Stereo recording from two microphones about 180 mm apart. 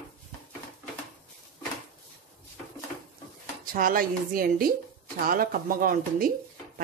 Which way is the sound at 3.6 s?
50° right (ahead or behind).